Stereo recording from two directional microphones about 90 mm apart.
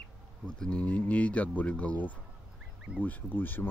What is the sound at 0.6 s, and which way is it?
Speech, 10° left (ahead or behind).